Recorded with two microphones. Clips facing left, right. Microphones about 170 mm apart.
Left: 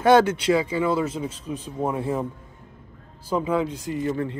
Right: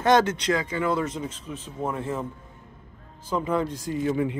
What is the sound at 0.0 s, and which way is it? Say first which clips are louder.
Speech: left 4 dB; 10° left (ahead or behind).